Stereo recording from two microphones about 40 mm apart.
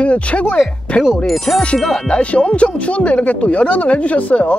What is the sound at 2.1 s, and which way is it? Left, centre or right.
Speech, left.